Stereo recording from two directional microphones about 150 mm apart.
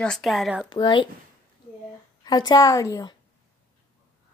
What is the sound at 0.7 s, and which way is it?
Speech, 30° left (ahead or behind).